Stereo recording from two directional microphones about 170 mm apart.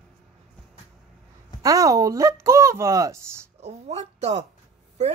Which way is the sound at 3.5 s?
40° right (ahead or behind).